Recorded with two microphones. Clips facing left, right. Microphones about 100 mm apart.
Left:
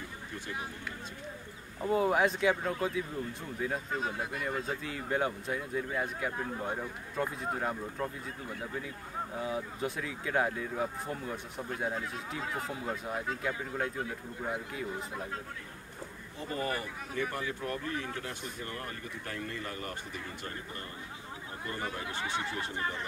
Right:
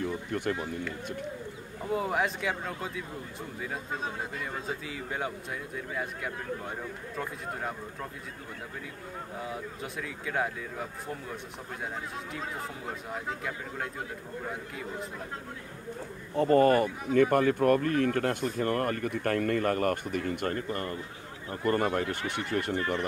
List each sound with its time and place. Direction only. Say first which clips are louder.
0.0 s a sound: right 12 dB; 65° right (ahead or behind)
1.9 s speech: left 2 dB; centre (ahead or behind)
4.6 s speech: even; centre (ahead or behind)
9.4 s speech: left 4 dB; centre (ahead or behind)
16.3 s speech: right 14 dB; 60° right (ahead or behind)